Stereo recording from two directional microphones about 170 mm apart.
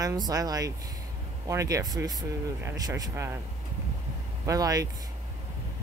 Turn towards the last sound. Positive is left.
turn(degrees=-20)  # may be behind; listen again after turning